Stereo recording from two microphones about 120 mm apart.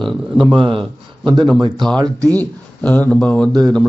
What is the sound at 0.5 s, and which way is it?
Speech, 45° right (ahead or behind).